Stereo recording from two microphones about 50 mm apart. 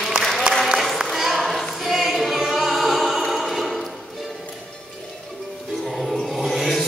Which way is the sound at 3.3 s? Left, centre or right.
Centre.